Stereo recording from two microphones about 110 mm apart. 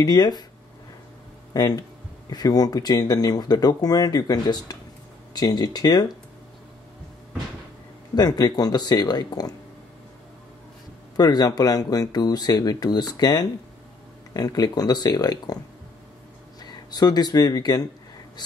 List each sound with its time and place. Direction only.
0.0 s speech: 40° left (ahead or behind)
1.5 s speech: 35° left (ahead or behind)
8.1 s speech: 40° left (ahead or behind)
11.1 s speech: 35° left (ahead or behind)
16.9 s speech: 35° left (ahead or behind)